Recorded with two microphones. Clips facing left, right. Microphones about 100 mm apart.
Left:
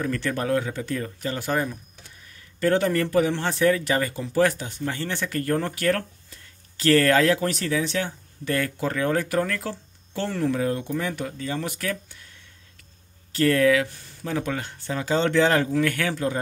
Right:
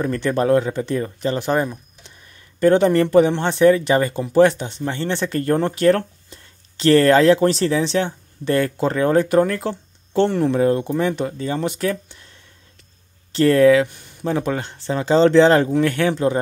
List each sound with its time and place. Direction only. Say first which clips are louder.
0.0 s speech: right 7 dB; 30° right (ahead or behind)
13.3 s speech: right 6 dB; 30° right (ahead or behind)